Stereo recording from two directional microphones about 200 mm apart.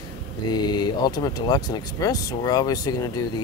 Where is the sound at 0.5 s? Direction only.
20° left (ahead or behind).